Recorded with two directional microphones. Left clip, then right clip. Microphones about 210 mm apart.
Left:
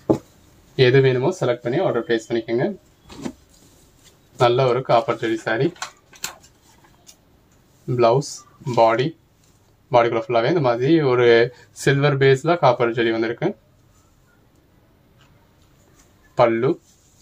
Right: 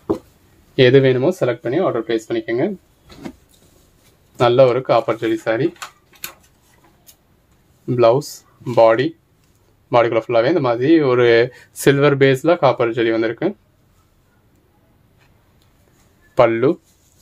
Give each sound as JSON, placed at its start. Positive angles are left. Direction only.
{"t": 0.7, "sound": "a man's voice", "side_deg": -50}
{"t": 4.4, "sound": "a man's voice", "side_deg": -50}
{"t": 7.8, "sound": "a man's voice", "side_deg": -45}
{"t": 16.3, "sound": "a man's voice", "side_deg": -55}